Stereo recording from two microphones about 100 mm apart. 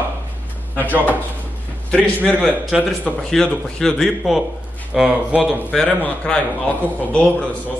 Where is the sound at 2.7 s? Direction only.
5° right (ahead or behind).